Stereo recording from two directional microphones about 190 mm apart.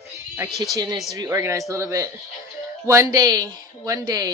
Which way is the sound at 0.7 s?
20° right (ahead or behind).